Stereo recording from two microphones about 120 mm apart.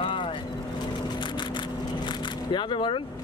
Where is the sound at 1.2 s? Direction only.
40° left (ahead or behind).